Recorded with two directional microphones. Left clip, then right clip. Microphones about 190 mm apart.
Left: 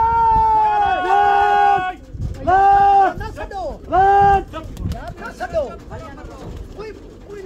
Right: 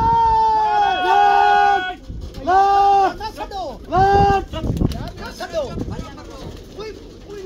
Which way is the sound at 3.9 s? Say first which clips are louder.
Left 2 dB; 5° left (ahead or behind).